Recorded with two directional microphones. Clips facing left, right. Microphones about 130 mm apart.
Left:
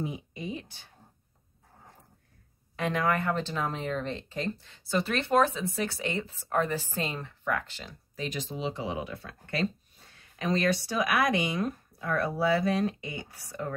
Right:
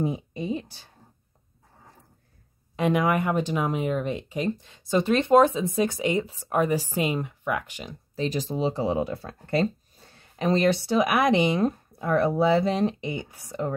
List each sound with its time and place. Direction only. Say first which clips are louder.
0.0 s a sound: right 7 dB; 35° right (ahead or behind)
2.7 s speech: right 5 dB; 15° right (ahead or behind)
8.2 s speech: right 8 dB; 40° right (ahead or behind); by 13.7 s 20° right (ahead or behind)